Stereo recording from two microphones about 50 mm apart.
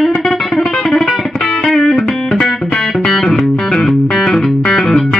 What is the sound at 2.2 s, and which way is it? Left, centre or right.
Music, centre.